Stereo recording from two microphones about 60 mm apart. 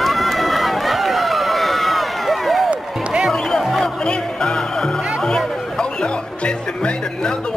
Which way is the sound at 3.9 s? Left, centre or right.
Centre.